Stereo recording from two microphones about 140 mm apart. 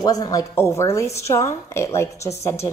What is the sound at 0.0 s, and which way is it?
A woman's voice, 25° left (ahead or behind).